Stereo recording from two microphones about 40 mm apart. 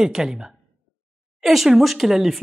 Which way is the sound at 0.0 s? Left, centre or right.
Centre.